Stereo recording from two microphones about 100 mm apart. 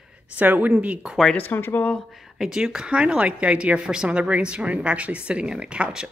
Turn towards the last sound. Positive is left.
turn(degrees=-10)  # may be behind; listen again after turning